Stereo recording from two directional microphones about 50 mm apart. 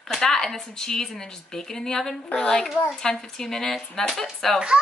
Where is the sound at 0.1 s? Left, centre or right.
Centre.